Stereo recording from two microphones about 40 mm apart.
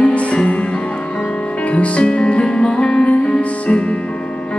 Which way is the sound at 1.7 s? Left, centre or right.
Left.